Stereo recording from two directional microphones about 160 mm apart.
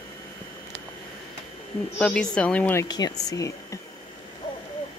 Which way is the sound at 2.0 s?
5° left (ahead or behind).